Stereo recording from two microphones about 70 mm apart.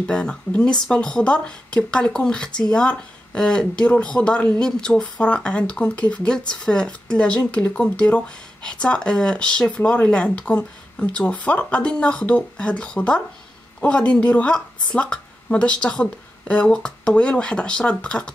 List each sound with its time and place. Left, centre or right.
0.0 s speech: centre